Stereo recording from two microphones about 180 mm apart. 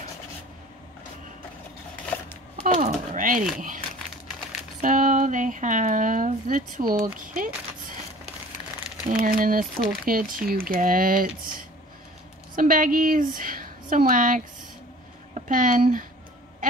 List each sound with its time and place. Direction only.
2.6 s a sound: 45° right (ahead or behind)
3.5 s crumpling: 45° right (ahead or behind)
4.8 s speech: 45° right (ahead or behind)
9.2 s speech: 50° right (ahead or behind)
12.5 s a woman's voice: 50° right (ahead or behind)